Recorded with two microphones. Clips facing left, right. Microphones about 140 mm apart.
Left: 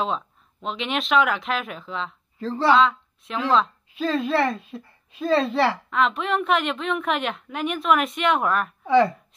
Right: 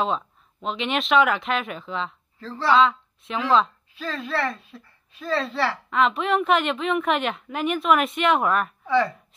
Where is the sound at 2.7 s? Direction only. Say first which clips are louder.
Right 1 dB; centre (ahead or behind).